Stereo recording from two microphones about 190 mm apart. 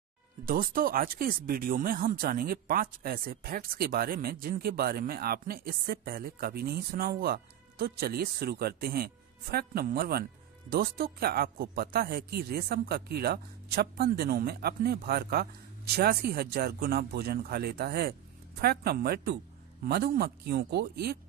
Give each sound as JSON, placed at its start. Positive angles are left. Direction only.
{"t": 0.5, "sound": "speech", "side_deg": -50}